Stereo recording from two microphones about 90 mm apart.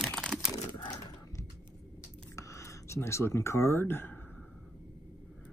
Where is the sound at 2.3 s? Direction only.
35° left (ahead or behind).